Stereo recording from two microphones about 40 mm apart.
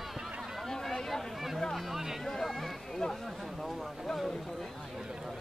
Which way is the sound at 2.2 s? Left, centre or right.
Centre.